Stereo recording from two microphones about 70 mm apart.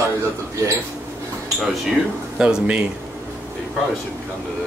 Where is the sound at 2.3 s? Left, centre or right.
Centre.